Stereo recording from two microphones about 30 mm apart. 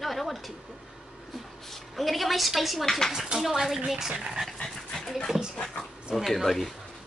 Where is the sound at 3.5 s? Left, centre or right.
Centre.